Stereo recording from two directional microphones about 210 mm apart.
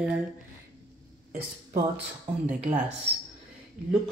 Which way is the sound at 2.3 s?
35° right (ahead or behind).